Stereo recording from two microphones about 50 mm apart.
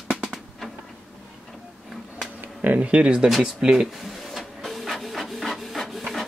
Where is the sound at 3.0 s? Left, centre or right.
Centre.